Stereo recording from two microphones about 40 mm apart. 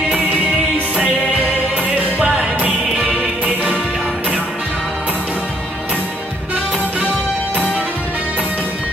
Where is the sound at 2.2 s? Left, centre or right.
Right.